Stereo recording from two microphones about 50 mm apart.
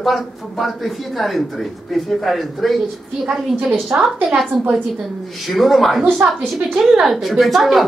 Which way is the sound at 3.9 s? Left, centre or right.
Right.